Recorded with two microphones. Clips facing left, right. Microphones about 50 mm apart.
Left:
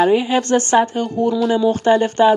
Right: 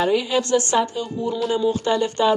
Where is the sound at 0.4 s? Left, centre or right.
Left.